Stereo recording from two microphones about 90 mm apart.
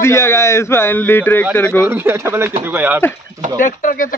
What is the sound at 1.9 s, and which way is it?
Speech, 30° right (ahead or behind).